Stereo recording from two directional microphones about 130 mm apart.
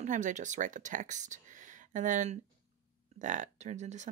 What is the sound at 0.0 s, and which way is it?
Speech, 70° right (ahead or behind).